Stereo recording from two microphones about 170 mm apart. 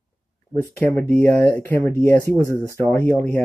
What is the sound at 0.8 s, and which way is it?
Speech, 10° left (ahead or behind).